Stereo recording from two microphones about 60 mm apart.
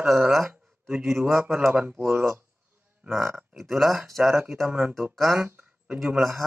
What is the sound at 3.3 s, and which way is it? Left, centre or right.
Speech, centre.